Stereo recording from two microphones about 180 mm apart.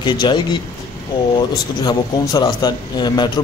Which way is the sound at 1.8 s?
25° left (ahead or behind).